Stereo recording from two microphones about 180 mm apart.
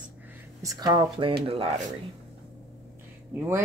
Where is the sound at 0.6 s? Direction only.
20° right (ahead or behind).